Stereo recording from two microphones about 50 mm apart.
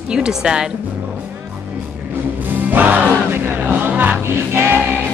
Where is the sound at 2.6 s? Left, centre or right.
Right.